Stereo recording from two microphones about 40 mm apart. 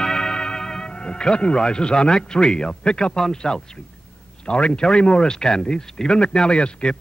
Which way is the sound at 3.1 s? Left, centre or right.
Centre.